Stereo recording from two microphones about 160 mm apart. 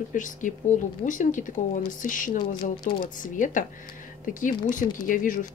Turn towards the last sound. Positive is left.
turn(degrees=55)  # may be behind; listen again after turning